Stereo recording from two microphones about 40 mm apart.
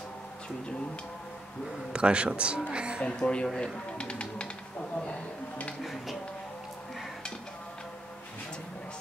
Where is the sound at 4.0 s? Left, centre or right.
Left.